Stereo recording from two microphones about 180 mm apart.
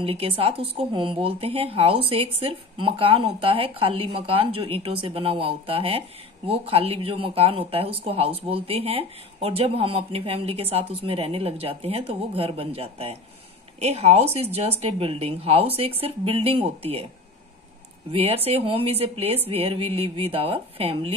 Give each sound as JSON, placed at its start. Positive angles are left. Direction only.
{"t": 0.0, "sound": "speech", "side_deg": -30}
{"t": 18.1, "sound": "speech", "side_deg": -35}